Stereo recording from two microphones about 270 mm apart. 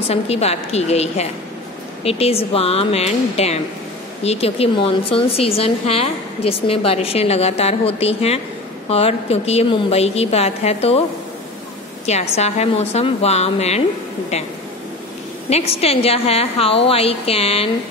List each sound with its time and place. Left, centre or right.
0.1 s a woman's voice: left
12.1 s a woman's voice: left
15.5 s a woman's voice: left